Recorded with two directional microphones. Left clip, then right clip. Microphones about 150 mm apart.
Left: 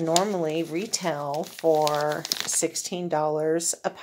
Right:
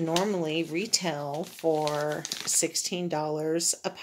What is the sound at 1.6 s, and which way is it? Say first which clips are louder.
Speech: left 5 dB; 50° left (ahead or behind).